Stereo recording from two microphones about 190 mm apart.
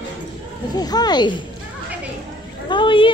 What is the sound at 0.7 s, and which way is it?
Speech, 20° left (ahead or behind).